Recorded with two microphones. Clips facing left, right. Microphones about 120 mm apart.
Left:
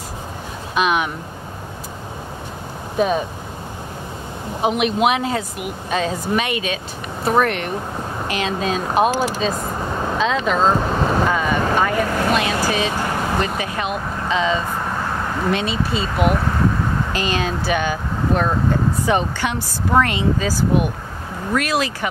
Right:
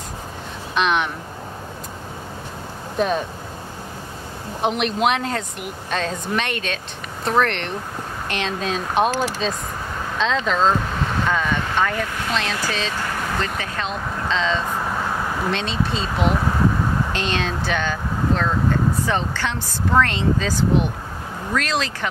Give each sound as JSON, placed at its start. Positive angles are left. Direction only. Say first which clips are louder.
{"t": 0.7, "sound": "speech", "louder": "left 1 dB", "side_deg": 5}
{"t": 3.0, "sound": "speech", "louder": "left 2 dB", "side_deg": 5}
{"t": 4.6, "sound": "speech", "louder": "left 3 dB", "side_deg": 5}
{"t": 10.9, "sound": "vehicle", "louder": "left 6 dB", "side_deg": 40}
{"t": 11.2, "sound": "speech", "louder": "left 3 dB", "side_deg": 5}
{"t": 12.1, "sound": "speech", "louder": "left 7 dB", "side_deg": 55}
{"t": 12.6, "sound": "speech", "louder": "left 5 dB", "side_deg": 10}
{"t": 12.9, "sound": "vehicle", "louder": "left 4 dB", "side_deg": 25}
{"t": 13.6, "sound": "speech", "louder": "left 3 dB", "side_deg": 10}